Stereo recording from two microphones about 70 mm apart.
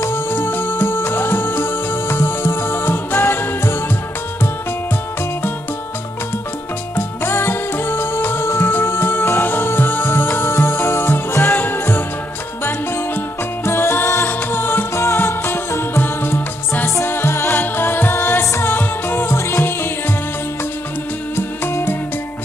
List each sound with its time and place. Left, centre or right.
0.0 s music: left
7.0 s music: left
15.0 s music: left
21.4 s music: left